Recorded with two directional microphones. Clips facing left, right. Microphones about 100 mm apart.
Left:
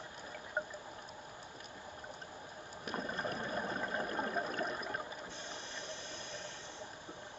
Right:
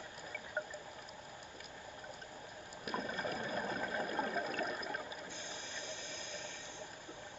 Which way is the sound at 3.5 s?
30° left (ahead or behind).